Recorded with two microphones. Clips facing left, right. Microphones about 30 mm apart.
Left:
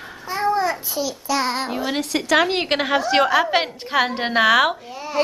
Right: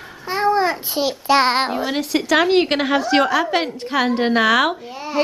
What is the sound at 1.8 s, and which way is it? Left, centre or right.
A woman's voice, centre.